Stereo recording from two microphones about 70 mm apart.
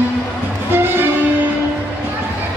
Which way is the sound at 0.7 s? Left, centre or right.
Right.